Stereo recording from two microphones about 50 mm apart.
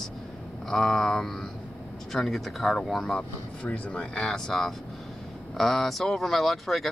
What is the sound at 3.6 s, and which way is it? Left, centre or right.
Speech, left.